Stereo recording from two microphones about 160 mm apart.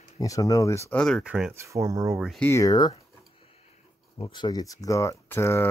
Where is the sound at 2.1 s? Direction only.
Centre (ahead or behind).